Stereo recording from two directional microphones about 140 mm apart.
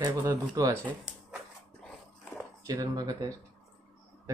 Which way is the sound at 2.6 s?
25° right (ahead or behind).